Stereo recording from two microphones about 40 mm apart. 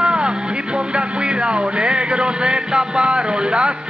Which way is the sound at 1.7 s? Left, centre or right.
Right.